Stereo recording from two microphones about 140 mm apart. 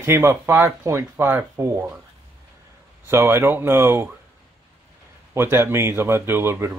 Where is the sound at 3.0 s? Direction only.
15° right (ahead or behind).